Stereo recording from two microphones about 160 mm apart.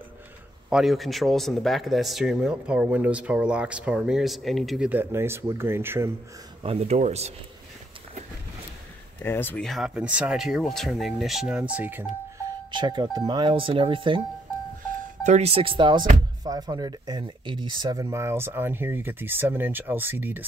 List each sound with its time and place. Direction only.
0.7 s speech: 5° right (ahead or behind)
6.6 s speech: 40° right (ahead or behind)
9.2 s speech: 10° left (ahead or behind)
9.7 s speech: centre (ahead or behind)
12.7 s speech: 30° right (ahead or behind)
15.2 s speech: 45° right (ahead or behind); by 20.4 s 10° right (ahead or behind)